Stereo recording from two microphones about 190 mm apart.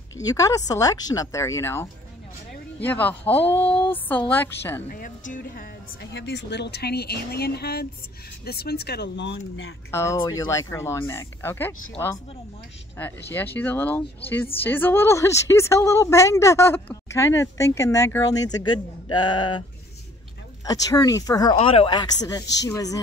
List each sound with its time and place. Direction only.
0.2 s a woman's voice: 20° left (ahead or behind)
4.9 s speech: 45° left (ahead or behind)
6.1 s speech: 65° left (ahead or behind)
9.8 s a woman's voice: 15° left (ahead or behind)
20.6 s speech: 20° left (ahead or behind)
21.5 s a woman's voice: 30° left (ahead or behind)